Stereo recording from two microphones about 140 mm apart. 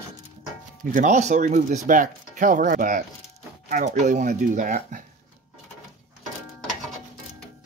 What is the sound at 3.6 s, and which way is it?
Speech, 60° right (ahead or behind).